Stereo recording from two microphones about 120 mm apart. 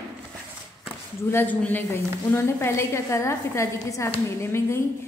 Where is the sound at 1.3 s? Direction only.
15° left (ahead or behind).